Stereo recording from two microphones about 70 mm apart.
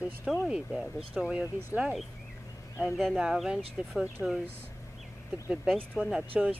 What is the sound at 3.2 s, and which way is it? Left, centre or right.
Speech, centre.